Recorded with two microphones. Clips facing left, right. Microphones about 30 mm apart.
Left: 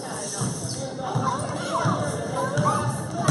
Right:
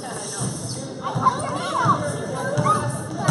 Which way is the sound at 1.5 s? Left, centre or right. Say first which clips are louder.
Right 2 dB; right.